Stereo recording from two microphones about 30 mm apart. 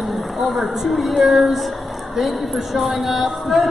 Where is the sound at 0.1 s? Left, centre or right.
Centre.